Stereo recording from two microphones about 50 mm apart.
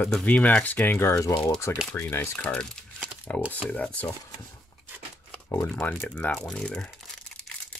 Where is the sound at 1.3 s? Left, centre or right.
Left.